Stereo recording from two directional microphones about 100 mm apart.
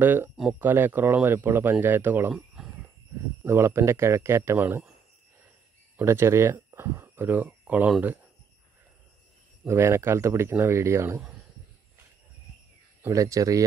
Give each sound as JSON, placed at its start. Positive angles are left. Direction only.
{"t": 0.0, "sound": "speech", "side_deg": -20}
{"t": 2.3, "sound": "cricket", "side_deg": -5}
{"t": 3.4, "sound": "speech", "side_deg": -25}
{"t": 5.9, "sound": "speech", "side_deg": -25}
{"t": 9.7, "sound": "speech", "side_deg": -25}
{"t": 13.1, "sound": "speech", "side_deg": -35}